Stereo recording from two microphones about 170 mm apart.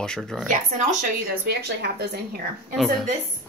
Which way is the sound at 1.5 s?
70° right (ahead or behind).